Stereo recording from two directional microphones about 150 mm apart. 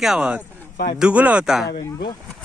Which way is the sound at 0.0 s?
5° right (ahead or behind).